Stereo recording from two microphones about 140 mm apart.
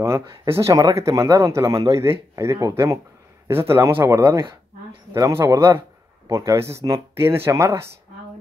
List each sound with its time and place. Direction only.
0.0 s a man's voice: 20° right (ahead or behind)